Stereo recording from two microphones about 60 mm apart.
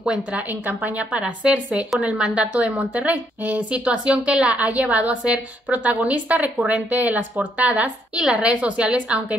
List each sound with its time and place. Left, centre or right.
0.0 s a woman's voice: centre
0.5 s a woman's voice: right
0.9 s a woman's voice: right